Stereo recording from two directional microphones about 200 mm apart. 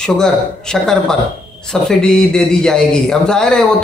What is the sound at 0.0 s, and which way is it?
A man's voice, 5° left (ahead or behind).